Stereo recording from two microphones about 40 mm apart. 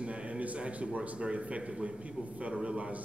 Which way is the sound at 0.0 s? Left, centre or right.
Right.